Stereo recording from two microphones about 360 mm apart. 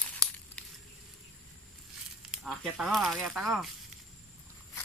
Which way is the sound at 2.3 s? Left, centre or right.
Centre.